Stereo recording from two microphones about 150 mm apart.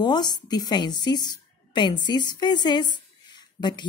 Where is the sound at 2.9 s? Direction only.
30° left (ahead or behind).